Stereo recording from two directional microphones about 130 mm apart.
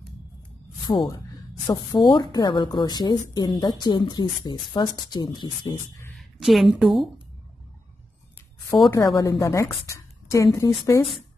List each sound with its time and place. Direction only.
0.8 s a woman's voice: 35° left (ahead or behind)
6.1 s a woman's voice: centre (ahead or behind)
8.9 s a woman's voice: 25° left (ahead or behind)